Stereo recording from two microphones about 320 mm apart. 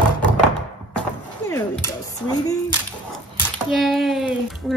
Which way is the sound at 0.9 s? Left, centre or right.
Centre.